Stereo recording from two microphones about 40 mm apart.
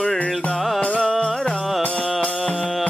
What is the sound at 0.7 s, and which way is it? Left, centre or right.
Music, left.